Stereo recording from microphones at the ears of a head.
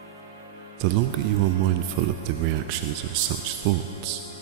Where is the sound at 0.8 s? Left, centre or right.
Right.